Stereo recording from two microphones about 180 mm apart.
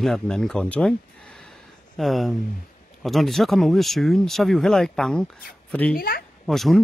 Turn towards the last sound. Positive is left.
turn(degrees=0)  # may be behind; listen again after turning